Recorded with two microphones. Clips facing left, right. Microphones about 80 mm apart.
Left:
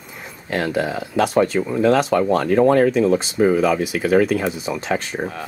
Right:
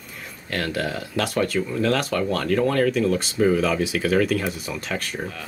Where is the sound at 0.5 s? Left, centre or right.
Centre.